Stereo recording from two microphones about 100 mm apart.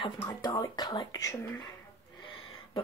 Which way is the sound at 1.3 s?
25° left (ahead or behind).